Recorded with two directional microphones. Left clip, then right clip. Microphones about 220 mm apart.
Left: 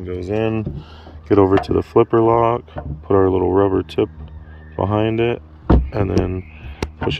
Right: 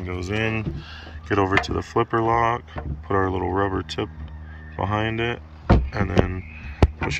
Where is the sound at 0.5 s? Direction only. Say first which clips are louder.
Left 3 dB; 45° left (ahead or behind).